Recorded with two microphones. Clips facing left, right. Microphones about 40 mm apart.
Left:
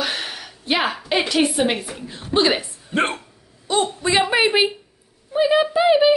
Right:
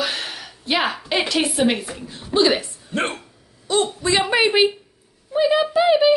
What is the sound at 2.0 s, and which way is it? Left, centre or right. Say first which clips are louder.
Speech: left 2 dB; left.